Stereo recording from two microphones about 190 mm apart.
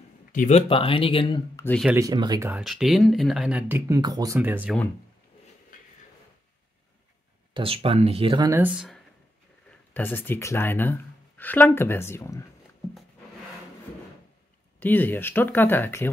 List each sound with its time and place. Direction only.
0.3 s speech: 40° left (ahead or behind)
2.0 s speech: 20° right (ahead or behind)
2.5 s speech: centre (ahead or behind)
7.5 s speech: 30° right (ahead or behind)
8.5 s speech: 10° right (ahead or behind)
9.7 s speech: 10° left (ahead or behind)
14.8 s speech: 10° left (ahead or behind)